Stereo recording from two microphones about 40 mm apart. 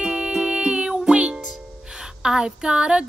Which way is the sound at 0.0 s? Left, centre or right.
Centre.